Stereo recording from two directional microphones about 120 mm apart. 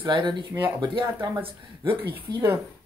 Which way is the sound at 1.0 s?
30° right (ahead or behind).